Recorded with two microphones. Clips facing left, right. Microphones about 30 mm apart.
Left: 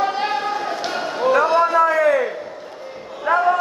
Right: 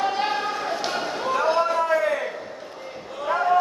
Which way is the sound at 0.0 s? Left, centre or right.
Centre.